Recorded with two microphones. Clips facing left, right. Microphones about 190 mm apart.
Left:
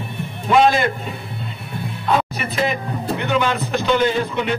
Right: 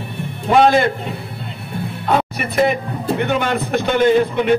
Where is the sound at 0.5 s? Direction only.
55° right (ahead or behind).